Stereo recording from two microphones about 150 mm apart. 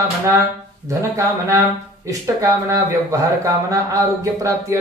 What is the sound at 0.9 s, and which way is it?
Speech, 20° right (ahead or behind).